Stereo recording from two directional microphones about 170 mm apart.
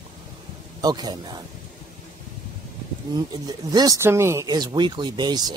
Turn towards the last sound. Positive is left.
turn(degrees=-25)  # may be behind; listen again after turning